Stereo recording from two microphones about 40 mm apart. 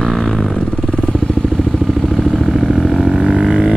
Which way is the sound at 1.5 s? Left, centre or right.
Centre.